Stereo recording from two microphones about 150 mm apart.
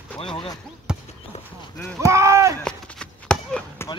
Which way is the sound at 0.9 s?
5° right (ahead or behind).